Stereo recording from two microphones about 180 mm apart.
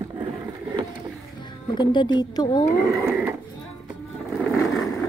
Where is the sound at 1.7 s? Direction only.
25° left (ahead or behind).